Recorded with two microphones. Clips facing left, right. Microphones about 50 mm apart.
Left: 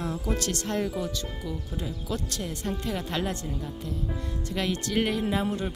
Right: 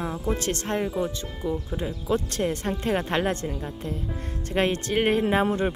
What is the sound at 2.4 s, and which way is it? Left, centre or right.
Speech, right.